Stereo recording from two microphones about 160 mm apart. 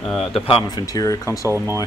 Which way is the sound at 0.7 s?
25° left (ahead or behind).